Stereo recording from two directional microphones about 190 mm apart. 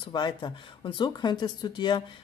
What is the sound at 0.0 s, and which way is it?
Speech, 25° left (ahead or behind).